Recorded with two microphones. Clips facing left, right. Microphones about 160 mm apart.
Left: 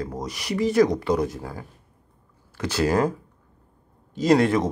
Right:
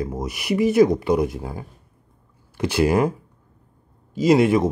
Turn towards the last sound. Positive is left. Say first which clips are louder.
# right 3 dB
turn(degrees=-10)  # may be behind; listen again after turning